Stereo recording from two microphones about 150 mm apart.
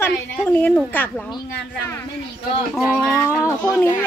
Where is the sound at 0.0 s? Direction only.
10° left (ahead or behind).